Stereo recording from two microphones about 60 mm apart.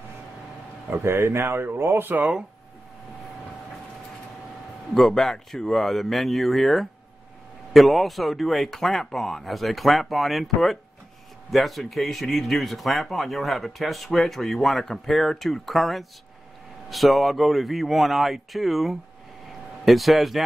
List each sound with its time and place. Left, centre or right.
0.8 s speech: right
4.9 s speech: centre